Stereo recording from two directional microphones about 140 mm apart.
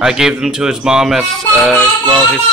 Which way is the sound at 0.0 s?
5° right (ahead or behind).